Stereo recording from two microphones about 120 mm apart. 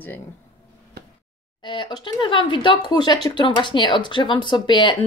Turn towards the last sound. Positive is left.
turn(degrees=40)  # may be behind; listen again after turning